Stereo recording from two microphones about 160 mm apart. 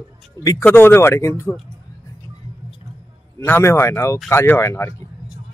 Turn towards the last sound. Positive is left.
turn(degrees=15)  # may be behind; listen again after turning